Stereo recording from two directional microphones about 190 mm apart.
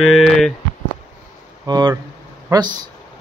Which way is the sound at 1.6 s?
20° right (ahead or behind).